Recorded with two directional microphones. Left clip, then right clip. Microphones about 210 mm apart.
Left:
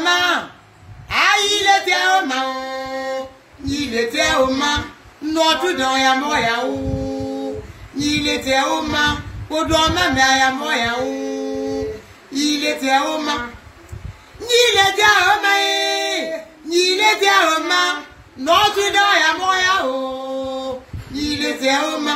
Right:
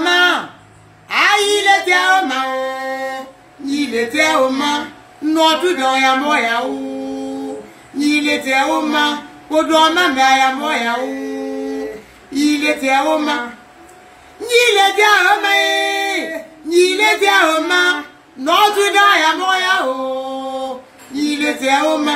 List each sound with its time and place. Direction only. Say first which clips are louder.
0.0 s a sound: right 3 dB; 15° left (ahead or behind)
2.5 s music: right 4 dB; 10° right (ahead or behind)
3.6 s a sound: right 2 dB; 10° left (ahead or behind)
6.2 s speech: right 3 dB; 15° left (ahead or behind)
7.9 s a sound: right 4 dB; 15° left (ahead or behind)
12.3 s female singing: right 4 dB; 15° left (ahead or behind)
14.4 s speech: right 2 dB; 15° left (ahead or behind)
16.6 s female singing: right 3 dB; 15° left (ahead or behind)
18.4 s speech: right 2 dB; 10° left (ahead or behind)